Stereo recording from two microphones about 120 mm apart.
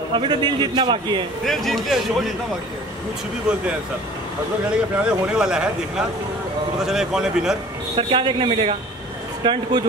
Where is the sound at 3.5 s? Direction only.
5° right (ahead or behind).